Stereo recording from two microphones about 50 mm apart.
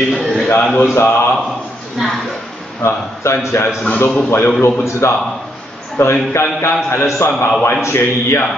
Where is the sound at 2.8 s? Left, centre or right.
Left.